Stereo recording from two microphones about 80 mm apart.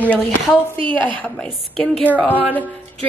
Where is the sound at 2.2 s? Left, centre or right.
Centre.